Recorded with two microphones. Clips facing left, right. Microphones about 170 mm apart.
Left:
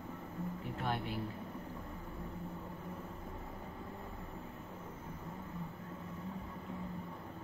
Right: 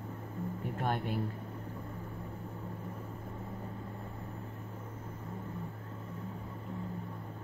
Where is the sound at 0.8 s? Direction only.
50° right (ahead or behind).